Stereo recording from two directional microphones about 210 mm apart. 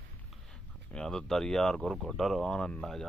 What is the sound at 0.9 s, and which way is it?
Speech, 5° left (ahead or behind).